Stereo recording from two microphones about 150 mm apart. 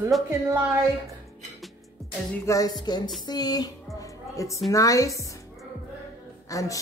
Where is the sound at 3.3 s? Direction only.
25° left (ahead or behind).